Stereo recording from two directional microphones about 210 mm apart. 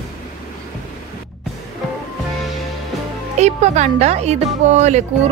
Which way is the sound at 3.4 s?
35° right (ahead or behind).